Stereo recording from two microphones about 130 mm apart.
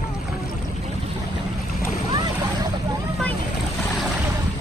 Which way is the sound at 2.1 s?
35° right (ahead or behind).